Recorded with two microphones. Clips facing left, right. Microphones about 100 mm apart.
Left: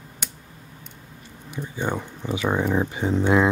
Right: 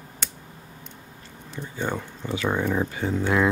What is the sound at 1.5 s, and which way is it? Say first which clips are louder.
Speech: left 2 dB; 15° left (ahead or behind).